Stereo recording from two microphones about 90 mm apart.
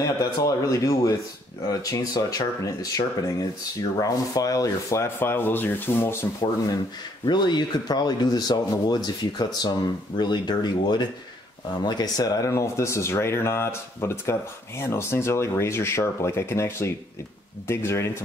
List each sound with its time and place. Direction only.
0.4 s speech: 40° left (ahead or behind); by 6.1 s 25° left (ahead or behind)
7.2 s speech: 55° left (ahead or behind); by 18.0 s 30° left (ahead or behind)